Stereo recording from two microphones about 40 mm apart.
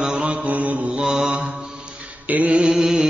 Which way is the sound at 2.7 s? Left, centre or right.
Centre.